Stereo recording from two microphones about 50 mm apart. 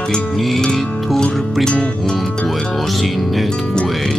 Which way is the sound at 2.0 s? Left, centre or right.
Centre.